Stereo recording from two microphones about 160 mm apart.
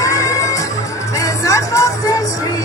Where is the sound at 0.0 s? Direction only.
20° left (ahead or behind).